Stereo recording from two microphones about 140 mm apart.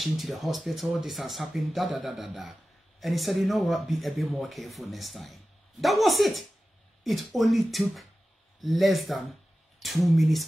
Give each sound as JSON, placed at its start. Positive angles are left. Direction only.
{"t": 0.0, "sound": "speech", "side_deg": 0}